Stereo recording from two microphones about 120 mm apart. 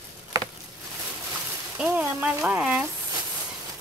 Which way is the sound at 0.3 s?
30° right (ahead or behind).